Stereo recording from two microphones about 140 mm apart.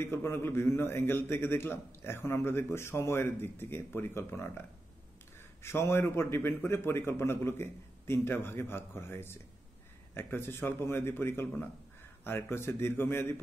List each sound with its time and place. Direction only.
0.0 s a man's voice: 15° left (ahead or behind)